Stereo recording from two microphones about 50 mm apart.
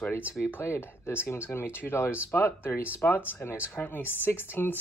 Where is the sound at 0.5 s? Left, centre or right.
Left.